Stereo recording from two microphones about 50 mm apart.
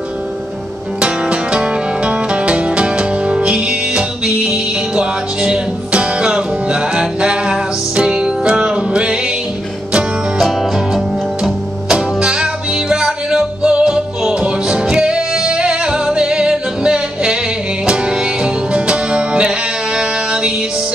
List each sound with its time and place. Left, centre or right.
1.0 s music: right
11.9 s music: centre